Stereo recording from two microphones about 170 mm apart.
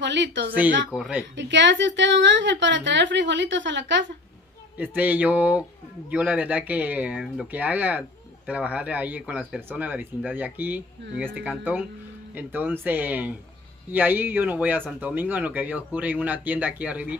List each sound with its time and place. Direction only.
0.0 s speech: 90° right
0.9 s speech: 5° right (ahead or behind)
1.3 s speech: 90° right
4.7 s speech: 10° right (ahead or behind)
12.4 s speech: 10° right (ahead or behind)